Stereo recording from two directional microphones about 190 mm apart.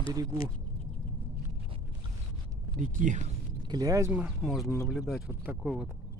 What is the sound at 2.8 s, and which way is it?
Speech, 40° right (ahead or behind).